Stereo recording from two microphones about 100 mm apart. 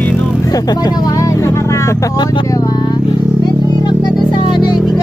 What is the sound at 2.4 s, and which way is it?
Vehicle, 35° left (ahead or behind).